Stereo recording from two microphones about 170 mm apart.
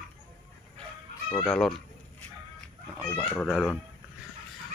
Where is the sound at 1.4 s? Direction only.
Centre (ahead or behind).